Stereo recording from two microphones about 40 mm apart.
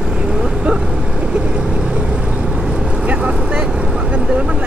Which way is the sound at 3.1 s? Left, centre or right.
Right.